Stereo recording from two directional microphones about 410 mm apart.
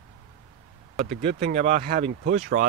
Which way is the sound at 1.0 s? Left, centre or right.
Centre.